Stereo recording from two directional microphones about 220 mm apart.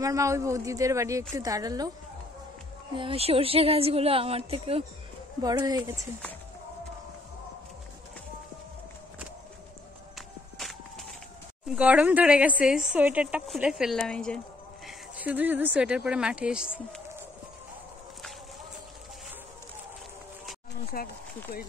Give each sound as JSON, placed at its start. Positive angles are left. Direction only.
{"t": 0.0, "sound": "speech", "side_deg": -15}
{"t": 2.9, "sound": "speech", "side_deg": -25}
{"t": 10.1, "sound": "walk", "side_deg": 0}
{"t": 11.7, "sound": "speech", "side_deg": -5}
{"t": 14.9, "sound": "speech", "side_deg": -5}
{"t": 20.9, "sound": "speech", "side_deg": 40}